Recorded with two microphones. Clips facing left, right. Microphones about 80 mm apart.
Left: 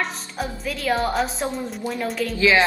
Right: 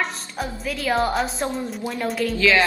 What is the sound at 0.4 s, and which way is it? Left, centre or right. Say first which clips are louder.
A woman's voice: even; centre.